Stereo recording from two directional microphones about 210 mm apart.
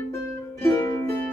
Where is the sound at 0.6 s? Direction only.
10° left (ahead or behind).